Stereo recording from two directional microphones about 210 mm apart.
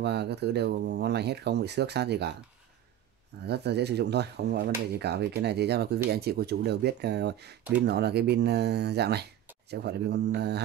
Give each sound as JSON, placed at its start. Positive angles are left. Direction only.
{"t": 0.0, "sound": "speech", "side_deg": -50}
{"t": 3.4, "sound": "speech", "side_deg": -50}